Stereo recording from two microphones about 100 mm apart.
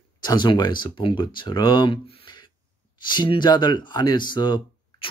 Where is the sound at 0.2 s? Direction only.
45° left (ahead or behind).